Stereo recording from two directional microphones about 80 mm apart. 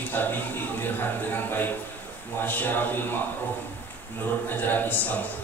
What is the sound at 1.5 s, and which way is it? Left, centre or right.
Speech, left.